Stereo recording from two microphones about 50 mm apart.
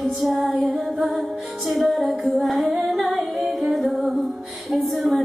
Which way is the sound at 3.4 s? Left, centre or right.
Centre.